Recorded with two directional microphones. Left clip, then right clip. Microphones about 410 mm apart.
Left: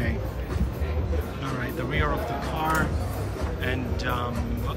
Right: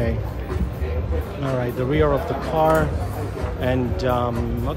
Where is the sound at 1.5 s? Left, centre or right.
Centre.